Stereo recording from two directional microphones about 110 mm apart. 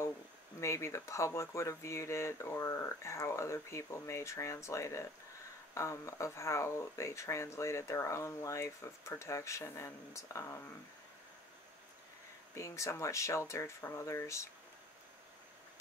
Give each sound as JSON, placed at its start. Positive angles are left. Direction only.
{"t": 0.6, "sound": "speech", "side_deg": 25}
{"t": 12.5, "sound": "speech", "side_deg": 25}